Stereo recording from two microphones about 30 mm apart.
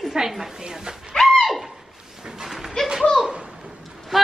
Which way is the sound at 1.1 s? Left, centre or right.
Centre.